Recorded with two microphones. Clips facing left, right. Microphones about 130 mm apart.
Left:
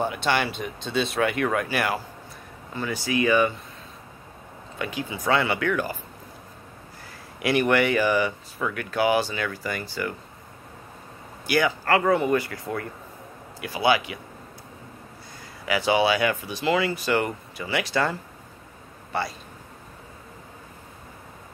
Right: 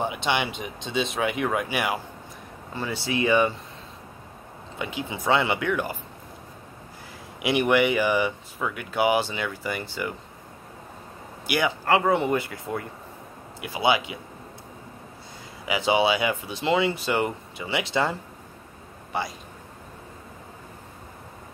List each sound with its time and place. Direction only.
0.0 s speech: 15° right (ahead or behind)
2.7 s speech: 25° right (ahead or behind)
4.7 s speech: 20° right (ahead or behind)
7.4 s speech: 15° right (ahead or behind)
11.4 s a man's voice: 20° right (ahead or behind)
15.6 s speech: 20° right (ahead or behind)